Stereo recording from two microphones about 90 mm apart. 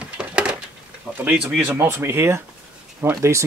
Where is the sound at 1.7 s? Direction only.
30° right (ahead or behind).